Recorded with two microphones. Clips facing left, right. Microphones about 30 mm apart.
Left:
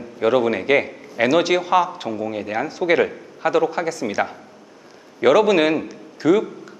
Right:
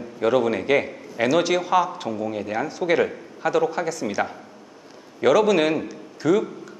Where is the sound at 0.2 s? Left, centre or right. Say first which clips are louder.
Left 2 dB; centre.